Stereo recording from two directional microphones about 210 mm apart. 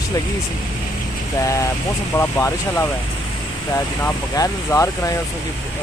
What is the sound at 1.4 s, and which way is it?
Speech, 15° left (ahead or behind).